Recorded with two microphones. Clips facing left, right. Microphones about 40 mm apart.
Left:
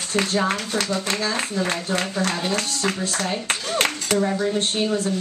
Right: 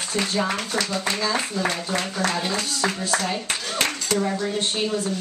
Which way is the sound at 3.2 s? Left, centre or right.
Left.